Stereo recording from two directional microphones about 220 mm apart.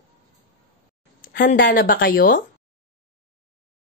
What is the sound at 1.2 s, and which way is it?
Speech, 40° left (ahead or behind).